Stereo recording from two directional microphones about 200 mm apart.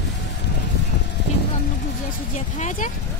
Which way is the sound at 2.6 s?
35° left (ahead or behind).